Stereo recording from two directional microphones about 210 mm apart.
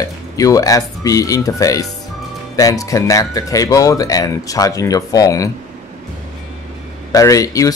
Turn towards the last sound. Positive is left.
turn(degrees=15)  # may be behind; listen again after turning